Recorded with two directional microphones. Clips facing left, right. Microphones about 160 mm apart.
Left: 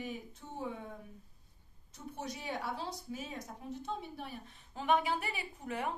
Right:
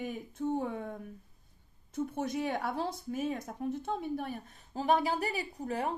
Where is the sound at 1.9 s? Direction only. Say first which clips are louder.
Right 9 dB; 55° right (ahead or behind).